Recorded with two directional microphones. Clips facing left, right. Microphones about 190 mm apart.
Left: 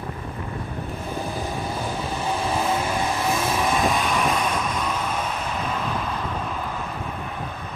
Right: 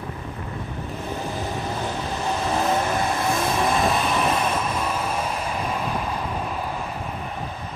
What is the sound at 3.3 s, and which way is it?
Vehicle, centre (ahead or behind).